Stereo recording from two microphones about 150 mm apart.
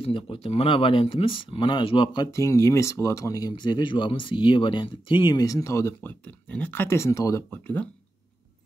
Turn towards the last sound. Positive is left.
turn(degrees=15)  # may be behind; listen again after turning